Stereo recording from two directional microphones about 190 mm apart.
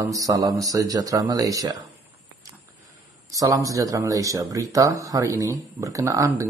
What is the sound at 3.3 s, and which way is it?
Speech, 15° right (ahead or behind).